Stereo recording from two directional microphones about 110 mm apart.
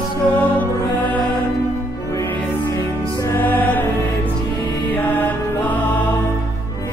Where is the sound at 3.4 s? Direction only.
15° left (ahead or behind).